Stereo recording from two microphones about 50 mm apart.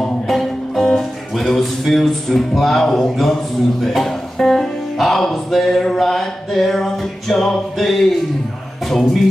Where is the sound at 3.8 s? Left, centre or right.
Centre.